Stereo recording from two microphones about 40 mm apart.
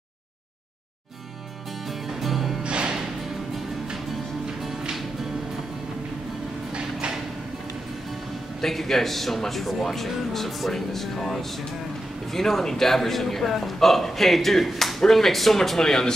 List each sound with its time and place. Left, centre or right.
1.9 s music: centre
2.6 s music: right
4.6 s music: centre
8.5 s a man's voice: centre